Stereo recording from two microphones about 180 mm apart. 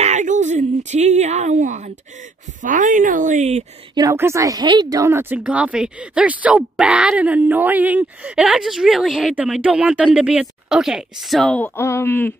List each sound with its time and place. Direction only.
0.0 s a sound: 40° right (ahead or behind)
2.6 s a woman's voice: 45° right (ahead or behind)
3.9 s speech: 20° right (ahead or behind); by 12.4 s 10° left (ahead or behind)